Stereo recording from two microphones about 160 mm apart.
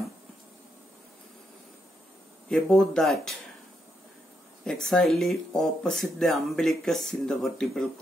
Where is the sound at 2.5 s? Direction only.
5° left (ahead or behind).